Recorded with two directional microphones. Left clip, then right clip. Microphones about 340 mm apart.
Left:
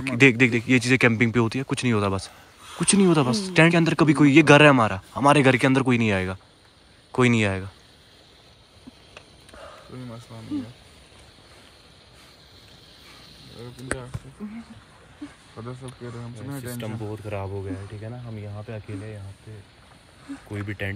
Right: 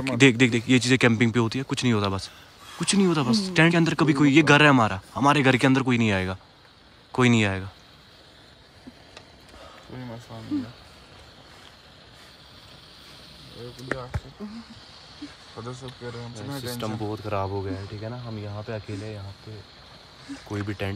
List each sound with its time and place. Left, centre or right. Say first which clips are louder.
0.2 s speech: left 2 dB; centre
15.6 s speech: right 1 dB; centre; by 18.4 s right
20.6 s speech: left 1 dB; centre